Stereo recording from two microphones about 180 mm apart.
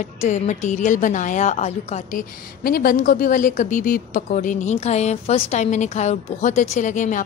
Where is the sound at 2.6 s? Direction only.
55° left (ahead or behind).